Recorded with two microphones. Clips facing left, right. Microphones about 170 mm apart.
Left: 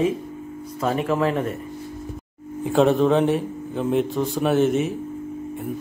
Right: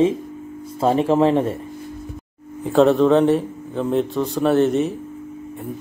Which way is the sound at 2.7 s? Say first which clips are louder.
Right 3 dB; centre (ahead or behind).